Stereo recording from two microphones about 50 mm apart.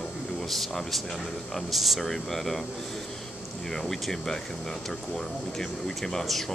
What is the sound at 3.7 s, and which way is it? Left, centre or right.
Speech, centre.